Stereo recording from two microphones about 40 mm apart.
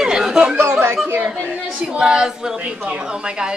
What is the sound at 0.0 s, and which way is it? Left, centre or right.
Chatter, centre.